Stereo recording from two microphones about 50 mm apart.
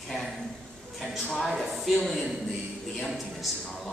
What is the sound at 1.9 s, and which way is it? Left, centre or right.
Speech, centre.